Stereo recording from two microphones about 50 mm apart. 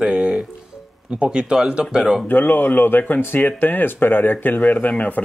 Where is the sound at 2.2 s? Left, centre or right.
Left.